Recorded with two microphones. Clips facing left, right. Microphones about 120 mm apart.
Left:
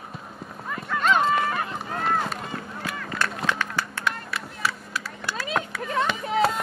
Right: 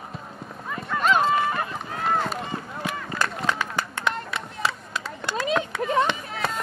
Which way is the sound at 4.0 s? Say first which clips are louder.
Right 2 dB; 25° right (ahead or behind).